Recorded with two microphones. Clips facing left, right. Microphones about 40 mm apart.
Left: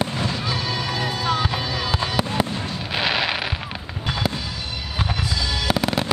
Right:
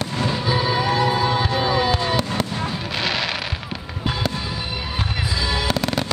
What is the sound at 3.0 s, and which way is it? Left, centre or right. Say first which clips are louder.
Music: left 2 dB; centre.